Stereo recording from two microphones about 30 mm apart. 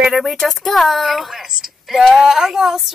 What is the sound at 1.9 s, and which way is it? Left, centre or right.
Female singing, centre.